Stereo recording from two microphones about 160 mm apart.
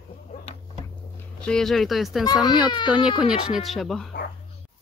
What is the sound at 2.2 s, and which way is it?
Speech, 25° left (ahead or behind).